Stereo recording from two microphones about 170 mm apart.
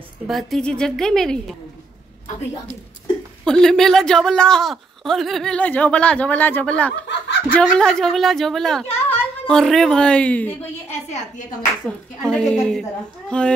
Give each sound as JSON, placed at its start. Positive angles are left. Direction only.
{"t": 0.3, "sound": "speech", "side_deg": 0}
{"t": 3.4, "sound": "speech", "side_deg": 5}
{"t": 7.1, "sound": "snicker", "side_deg": 80}
{"t": 7.5, "sound": "speech", "side_deg": 5}
{"t": 10.9, "sound": "a woman's voice", "side_deg": 40}
{"t": 11.9, "sound": "a woman's voice", "side_deg": 10}